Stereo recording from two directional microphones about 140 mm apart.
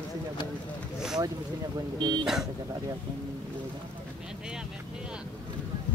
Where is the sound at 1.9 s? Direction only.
35° right (ahead or behind).